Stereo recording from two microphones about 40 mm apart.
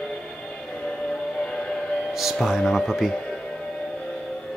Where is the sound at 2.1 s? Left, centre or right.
Centre.